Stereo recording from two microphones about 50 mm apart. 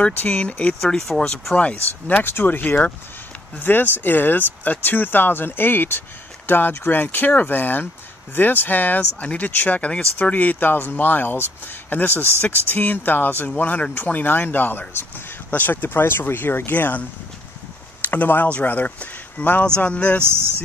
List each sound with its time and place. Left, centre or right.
0.0 s speech: left
0.8 s speech: centre
1.5 s speech: left
2.2 s speech: left
9.8 s speech: left
10.2 s speech: left
18.0 s speech: left